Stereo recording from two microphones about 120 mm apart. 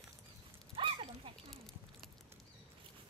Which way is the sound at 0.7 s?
45° right (ahead or behind).